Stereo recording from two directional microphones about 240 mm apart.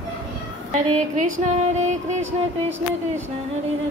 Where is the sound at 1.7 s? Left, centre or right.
Right.